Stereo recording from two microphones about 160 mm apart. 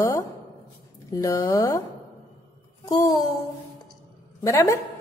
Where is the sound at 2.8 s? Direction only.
25° left (ahead or behind).